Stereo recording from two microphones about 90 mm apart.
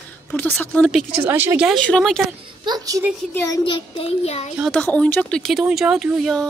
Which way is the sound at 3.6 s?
75° left (ahead or behind).